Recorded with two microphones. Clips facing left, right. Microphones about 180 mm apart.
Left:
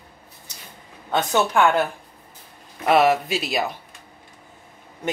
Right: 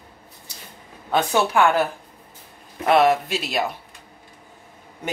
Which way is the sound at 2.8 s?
Centre (ahead or behind).